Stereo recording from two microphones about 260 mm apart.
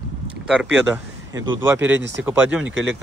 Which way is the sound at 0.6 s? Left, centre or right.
Centre.